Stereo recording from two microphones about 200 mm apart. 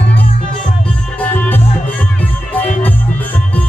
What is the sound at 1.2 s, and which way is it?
Music, 10° left (ahead or behind).